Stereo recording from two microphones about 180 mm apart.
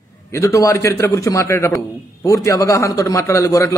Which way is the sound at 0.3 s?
15° left (ahead or behind).